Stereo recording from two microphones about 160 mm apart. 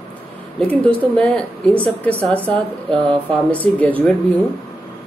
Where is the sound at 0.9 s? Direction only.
5° left (ahead or behind).